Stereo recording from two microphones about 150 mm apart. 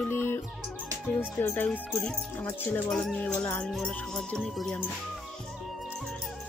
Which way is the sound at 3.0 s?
5° left (ahead or behind).